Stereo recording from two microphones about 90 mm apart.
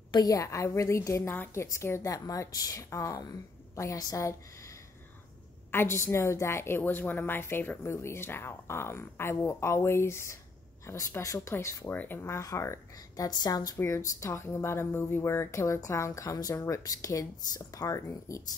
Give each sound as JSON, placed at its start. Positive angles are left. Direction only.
{"t": 0.1, "sound": "speech", "side_deg": 45}
{"t": 5.7, "sound": "speech", "side_deg": 25}
{"t": 11.9, "sound": "speech", "side_deg": 20}
{"t": 13.7, "sound": "speech", "side_deg": 30}